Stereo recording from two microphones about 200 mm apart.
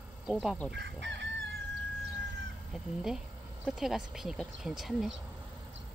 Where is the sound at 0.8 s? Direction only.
65° right (ahead or behind).